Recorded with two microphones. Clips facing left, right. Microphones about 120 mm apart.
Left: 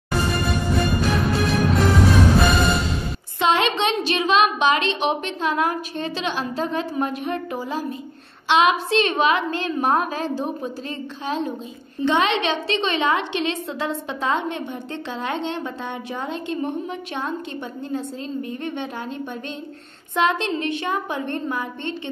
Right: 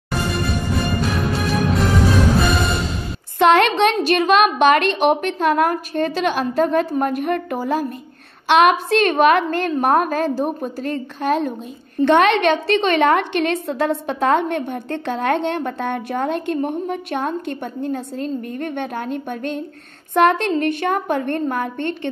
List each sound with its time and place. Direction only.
1.0 s music: centre (ahead or behind)
3.3 s a woman's voice: 60° right (ahead or behind)